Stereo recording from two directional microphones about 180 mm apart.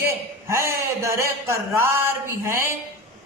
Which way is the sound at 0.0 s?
15° right (ahead or behind).